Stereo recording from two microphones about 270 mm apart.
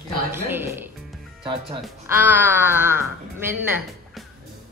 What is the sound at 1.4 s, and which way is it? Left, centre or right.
Speech, centre.